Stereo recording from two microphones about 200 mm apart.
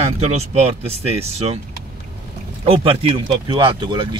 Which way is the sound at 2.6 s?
25° right (ahead or behind).